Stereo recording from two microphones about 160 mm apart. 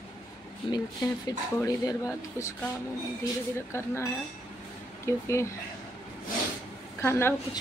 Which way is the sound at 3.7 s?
15° left (ahead or behind).